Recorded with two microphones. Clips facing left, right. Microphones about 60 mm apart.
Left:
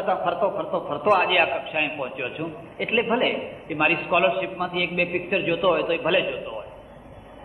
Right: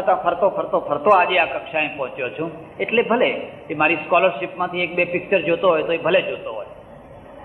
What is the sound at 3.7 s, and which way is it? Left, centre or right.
A man's voice, centre.